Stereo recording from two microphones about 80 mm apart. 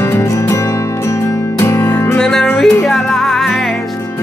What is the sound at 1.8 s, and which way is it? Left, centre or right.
Music, left.